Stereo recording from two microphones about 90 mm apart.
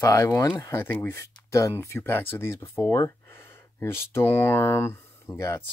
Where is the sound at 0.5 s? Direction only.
40° left (ahead or behind).